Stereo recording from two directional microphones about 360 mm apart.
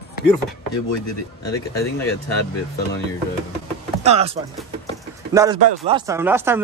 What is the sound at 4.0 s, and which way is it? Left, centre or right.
Speech, centre.